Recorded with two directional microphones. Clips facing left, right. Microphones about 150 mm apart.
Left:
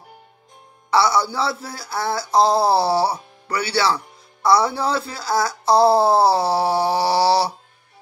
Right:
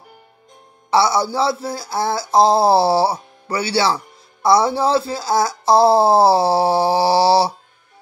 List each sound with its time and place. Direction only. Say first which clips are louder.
0.8 s speech: right 2 dB; 20° right (ahead or behind)